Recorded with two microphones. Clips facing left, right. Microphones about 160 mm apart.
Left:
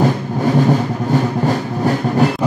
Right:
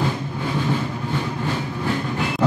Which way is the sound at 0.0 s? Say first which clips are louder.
Left 9 dB; 40° left (ahead or behind).